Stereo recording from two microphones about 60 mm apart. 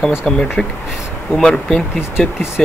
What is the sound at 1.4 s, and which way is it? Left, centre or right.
Speech, centre.